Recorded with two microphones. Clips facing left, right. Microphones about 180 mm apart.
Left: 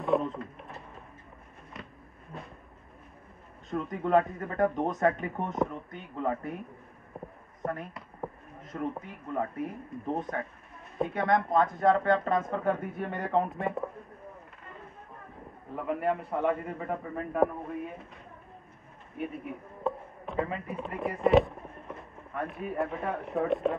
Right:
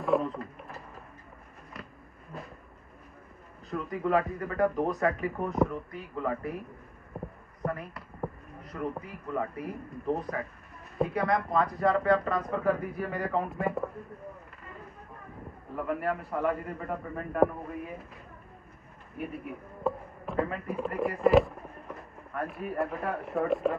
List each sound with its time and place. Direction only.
0.0 s drawer open or close: centre (ahead or behind)
3.7 s speech: centre (ahead or behind)
15.7 s speech: centre (ahead or behind)